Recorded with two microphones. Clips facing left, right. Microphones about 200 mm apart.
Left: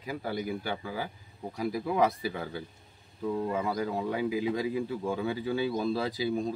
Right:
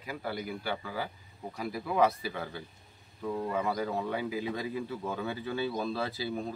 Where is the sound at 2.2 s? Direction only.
20° left (ahead or behind).